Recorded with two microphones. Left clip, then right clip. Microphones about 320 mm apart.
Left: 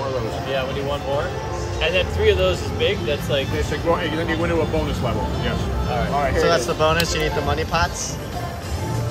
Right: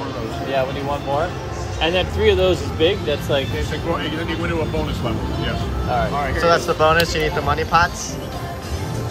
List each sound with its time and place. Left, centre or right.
1.8 s speech: centre
6.4 s speech: centre